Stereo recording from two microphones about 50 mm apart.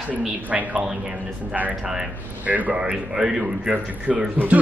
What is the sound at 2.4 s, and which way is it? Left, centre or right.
Speech, right.